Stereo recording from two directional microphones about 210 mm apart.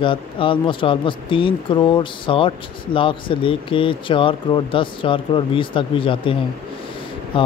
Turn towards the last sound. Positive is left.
turn(degrees=25)  # may be behind; listen again after turning